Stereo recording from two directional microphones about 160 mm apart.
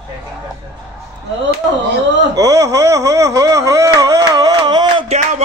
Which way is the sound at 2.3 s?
20° right (ahead or behind).